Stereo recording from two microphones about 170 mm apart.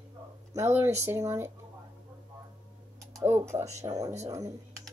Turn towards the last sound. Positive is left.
turn(degrees=-20)  # may be behind; listen again after turning